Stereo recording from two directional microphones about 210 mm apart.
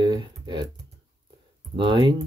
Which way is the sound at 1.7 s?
25° right (ahead or behind).